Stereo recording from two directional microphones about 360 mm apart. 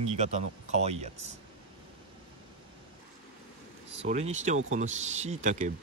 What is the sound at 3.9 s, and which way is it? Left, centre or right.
Speech, centre.